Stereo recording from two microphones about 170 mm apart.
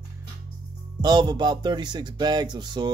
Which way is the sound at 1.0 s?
25° right (ahead or behind).